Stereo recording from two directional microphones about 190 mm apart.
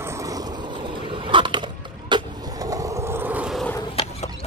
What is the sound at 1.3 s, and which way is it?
Skateboard, 25° right (ahead or behind).